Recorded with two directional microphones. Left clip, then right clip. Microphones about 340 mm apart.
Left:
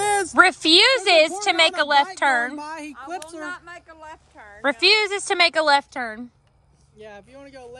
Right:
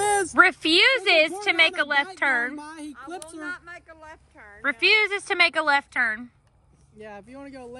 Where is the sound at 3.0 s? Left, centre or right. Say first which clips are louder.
Left 5 dB; left.